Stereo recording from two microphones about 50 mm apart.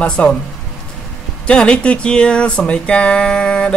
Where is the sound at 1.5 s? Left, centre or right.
Left.